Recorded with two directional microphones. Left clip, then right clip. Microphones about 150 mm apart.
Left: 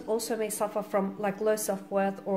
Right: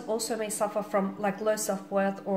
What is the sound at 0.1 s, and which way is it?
Speech, 40° left (ahead or behind).